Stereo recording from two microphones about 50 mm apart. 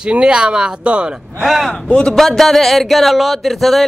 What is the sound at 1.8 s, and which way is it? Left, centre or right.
Speech, centre.